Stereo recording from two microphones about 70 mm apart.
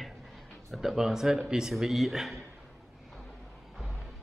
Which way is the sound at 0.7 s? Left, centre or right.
Centre.